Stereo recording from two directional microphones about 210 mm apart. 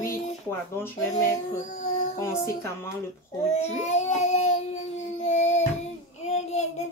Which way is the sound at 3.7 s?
35° left (ahead or behind).